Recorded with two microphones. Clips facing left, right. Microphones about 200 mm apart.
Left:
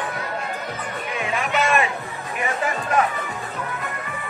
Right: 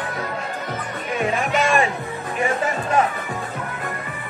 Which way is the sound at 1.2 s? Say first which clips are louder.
Right 3 dB; 35° right (ahead or behind).